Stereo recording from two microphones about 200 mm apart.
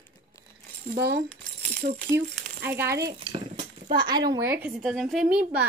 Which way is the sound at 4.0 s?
20° right (ahead or behind).